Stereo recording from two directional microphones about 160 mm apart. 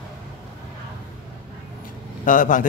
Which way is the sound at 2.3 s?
55° left (ahead or behind).